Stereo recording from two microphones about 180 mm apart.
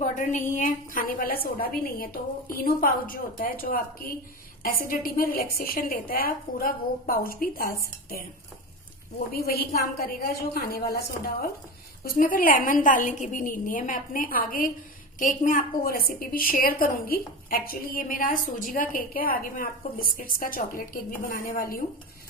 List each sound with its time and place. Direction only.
0.0 s a woman's voice: 40° left (ahead or behind)
9.3 s a woman's voice: 55° left (ahead or behind)